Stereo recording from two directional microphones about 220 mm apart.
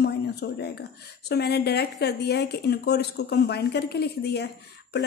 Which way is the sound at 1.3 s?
45° left (ahead or behind).